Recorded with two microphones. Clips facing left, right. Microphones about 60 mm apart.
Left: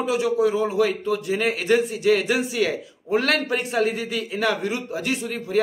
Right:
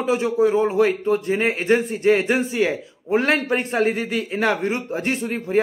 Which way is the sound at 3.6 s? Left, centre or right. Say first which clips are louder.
Right 2 dB; right.